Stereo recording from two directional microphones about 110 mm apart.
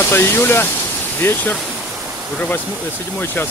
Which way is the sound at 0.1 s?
20° left (ahead or behind).